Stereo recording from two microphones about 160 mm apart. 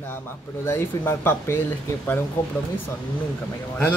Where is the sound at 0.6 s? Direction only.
15° left (ahead or behind).